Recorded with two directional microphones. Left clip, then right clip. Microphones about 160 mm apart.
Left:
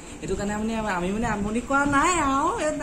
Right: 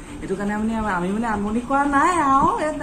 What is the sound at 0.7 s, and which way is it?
Speech, 5° left (ahead or behind).